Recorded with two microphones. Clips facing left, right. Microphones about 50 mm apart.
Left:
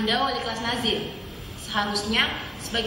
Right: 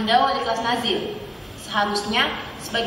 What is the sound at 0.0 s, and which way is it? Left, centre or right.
A woman's voice, centre.